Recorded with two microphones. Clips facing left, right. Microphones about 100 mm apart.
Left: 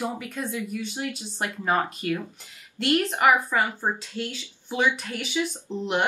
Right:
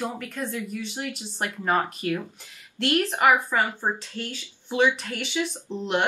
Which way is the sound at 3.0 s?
Centre (ahead or behind).